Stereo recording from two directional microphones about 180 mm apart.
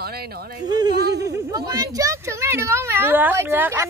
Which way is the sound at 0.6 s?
20° right (ahead or behind).